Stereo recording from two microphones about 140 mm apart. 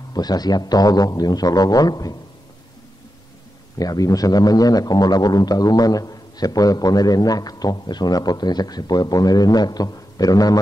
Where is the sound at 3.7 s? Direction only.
25° left (ahead or behind).